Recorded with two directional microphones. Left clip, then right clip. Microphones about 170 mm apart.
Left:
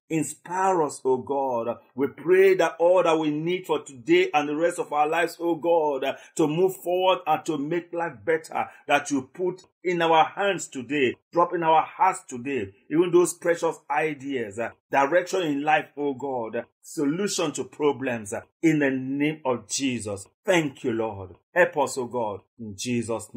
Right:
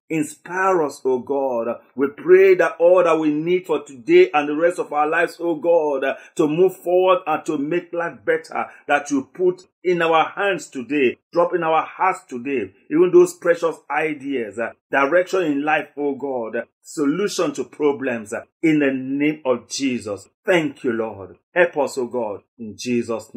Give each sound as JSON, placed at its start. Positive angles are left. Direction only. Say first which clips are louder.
{"t": 0.1, "sound": "speech", "louder": "right 4 dB", "side_deg": 30}